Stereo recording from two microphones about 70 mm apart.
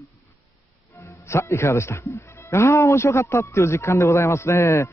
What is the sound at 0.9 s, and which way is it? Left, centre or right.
A man's voice, left.